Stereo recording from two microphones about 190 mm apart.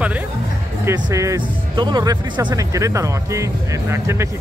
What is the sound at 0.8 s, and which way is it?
Speech, 15° right (ahead or behind).